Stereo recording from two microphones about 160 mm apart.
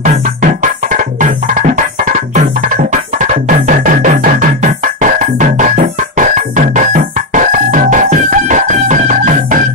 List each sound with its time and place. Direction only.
0.0 s music: 55° right (ahead or behind)